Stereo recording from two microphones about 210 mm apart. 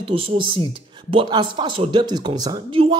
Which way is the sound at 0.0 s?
25° right (ahead or behind).